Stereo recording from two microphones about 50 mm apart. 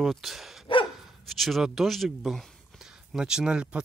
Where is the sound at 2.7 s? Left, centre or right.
Centre.